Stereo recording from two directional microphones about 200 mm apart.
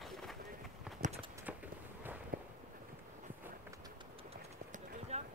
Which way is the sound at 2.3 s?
45° right (ahead or behind).